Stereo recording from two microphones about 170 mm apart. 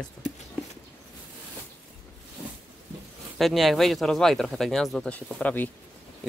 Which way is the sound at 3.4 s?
Centre (ahead or behind).